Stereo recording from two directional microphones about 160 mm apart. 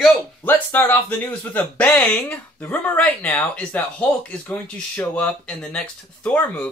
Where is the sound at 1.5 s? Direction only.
10° left (ahead or behind).